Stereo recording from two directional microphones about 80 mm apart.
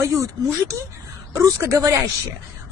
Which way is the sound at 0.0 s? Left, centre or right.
Right.